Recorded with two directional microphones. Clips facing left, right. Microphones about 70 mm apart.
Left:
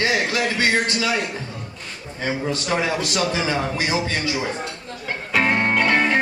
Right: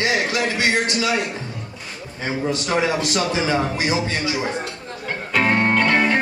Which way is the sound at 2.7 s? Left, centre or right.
Right.